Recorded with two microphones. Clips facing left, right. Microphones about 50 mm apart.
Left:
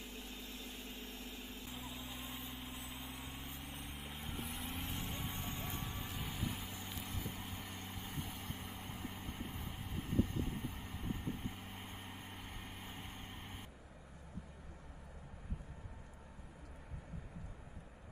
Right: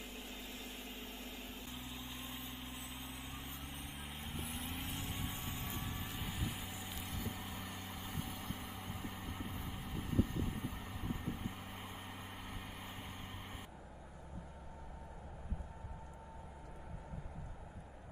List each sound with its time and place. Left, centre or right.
0.0 s vehicle: centre
7.5 s vehicle: centre
7.9 s vehicle: centre